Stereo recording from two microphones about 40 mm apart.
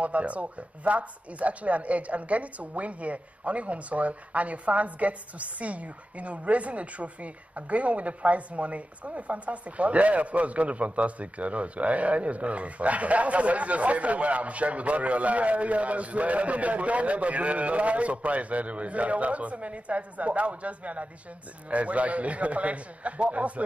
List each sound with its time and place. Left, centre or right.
0.0 s speech: right